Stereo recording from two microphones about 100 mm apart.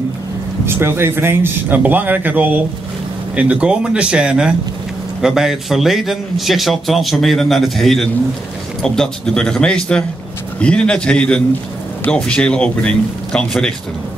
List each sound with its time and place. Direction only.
0.7 s a man's voice: 25° right (ahead or behind); by 13.7 s 5° left (ahead or behind)